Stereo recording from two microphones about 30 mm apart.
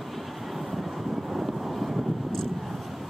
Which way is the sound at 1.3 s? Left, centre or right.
Centre.